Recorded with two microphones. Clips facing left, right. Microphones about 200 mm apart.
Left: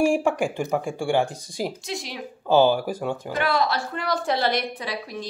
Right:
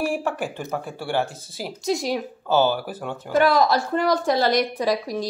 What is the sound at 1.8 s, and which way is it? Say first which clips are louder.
Speech: right 9 dB; 40° right (ahead or behind).